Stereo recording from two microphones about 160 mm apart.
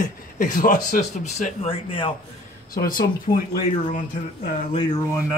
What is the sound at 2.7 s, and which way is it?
A man's voice, 65° left (ahead or behind).